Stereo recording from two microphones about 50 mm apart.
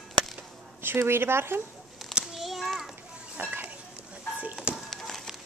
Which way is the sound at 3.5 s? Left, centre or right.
Right.